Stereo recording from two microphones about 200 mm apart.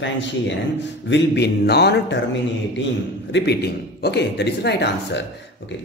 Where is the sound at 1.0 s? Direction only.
60° left (ahead or behind).